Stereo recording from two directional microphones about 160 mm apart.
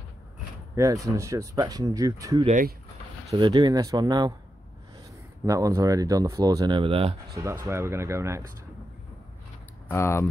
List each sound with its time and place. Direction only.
0.7 s speech: 20° right (ahead or behind)
5.4 s speech: 20° right (ahead or behind)
7.3 s speech: 20° right (ahead or behind)
9.8 s speech: 15° left (ahead or behind)